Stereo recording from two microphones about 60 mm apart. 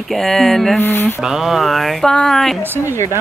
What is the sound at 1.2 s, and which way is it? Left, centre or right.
Speech, centre.